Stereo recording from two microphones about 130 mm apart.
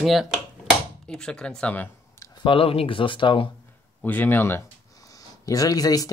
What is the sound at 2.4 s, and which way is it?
Speech, 45° left (ahead or behind).